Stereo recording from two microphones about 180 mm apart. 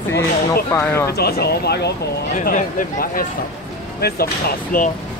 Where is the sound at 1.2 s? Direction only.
60° left (ahead or behind).